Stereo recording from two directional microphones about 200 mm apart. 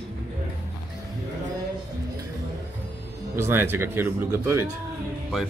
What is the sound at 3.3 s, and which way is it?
Speech, 10° right (ahead or behind).